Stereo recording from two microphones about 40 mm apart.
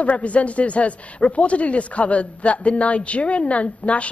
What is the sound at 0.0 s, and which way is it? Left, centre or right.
Speech, left.